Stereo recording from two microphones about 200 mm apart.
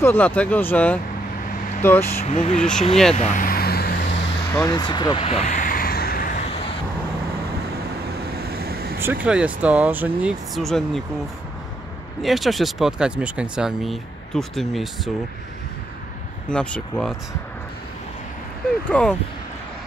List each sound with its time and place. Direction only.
0.0 s speech: 10° left (ahead or behind)
2.2 s speech: 30° left (ahead or behind)
3.2 s vehicle: 40° left (ahead or behind); by 4.3 s 55° left (ahead or behind)
4.5 s a sound: 15° left (ahead or behind)
8.4 s vehicle: 50° right (ahead or behind)
9.0 s speech: 5° right (ahead or behind)
12.2 s speech: centre (ahead or behind)
16.4 s speech: 5° left (ahead or behind)
18.9 s speech: 5° left (ahead or behind)